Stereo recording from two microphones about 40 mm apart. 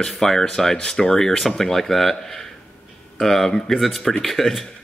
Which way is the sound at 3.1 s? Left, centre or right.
Centre.